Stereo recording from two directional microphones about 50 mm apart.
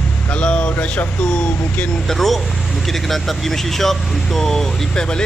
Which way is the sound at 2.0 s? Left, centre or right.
Centre.